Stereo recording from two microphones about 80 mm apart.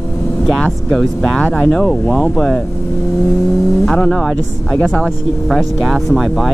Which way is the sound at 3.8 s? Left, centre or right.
Centre.